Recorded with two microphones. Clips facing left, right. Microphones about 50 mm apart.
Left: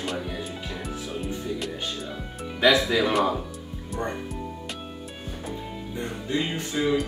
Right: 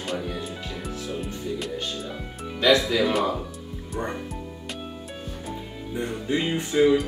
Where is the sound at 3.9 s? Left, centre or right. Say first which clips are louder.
Even; centre.